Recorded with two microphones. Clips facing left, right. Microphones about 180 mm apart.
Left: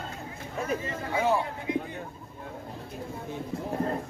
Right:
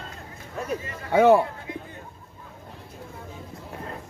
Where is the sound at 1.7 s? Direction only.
15° left (ahead or behind).